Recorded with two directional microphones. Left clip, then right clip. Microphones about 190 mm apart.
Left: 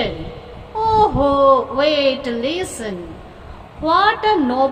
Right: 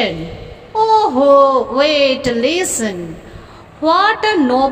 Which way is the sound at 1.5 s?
30° right (ahead or behind).